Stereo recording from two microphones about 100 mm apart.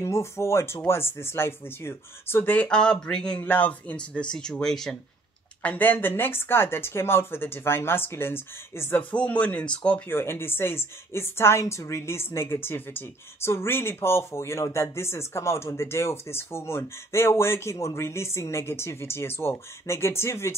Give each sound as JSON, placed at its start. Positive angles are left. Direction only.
{"t": 0.0, "sound": "a woman's voice", "side_deg": 25}
{"t": 5.6, "sound": "a woman's voice", "side_deg": 15}
{"t": 9.1, "sound": "speech", "side_deg": 15}
{"t": 10.1, "sound": "a woman's voice", "side_deg": 25}